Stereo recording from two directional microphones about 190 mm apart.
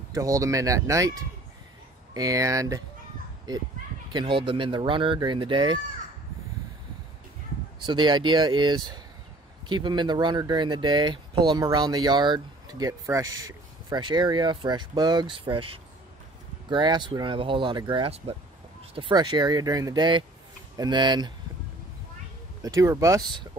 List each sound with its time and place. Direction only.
0.1 s speech: 15° right (ahead or behind)
2.1 s speech: 20° right (ahead or behind)
7.8 s speech: 25° right (ahead or behind)
22.6 s speech: 15° right (ahead or behind)